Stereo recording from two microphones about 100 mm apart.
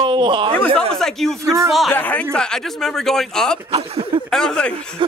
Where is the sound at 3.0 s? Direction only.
5° left (ahead or behind).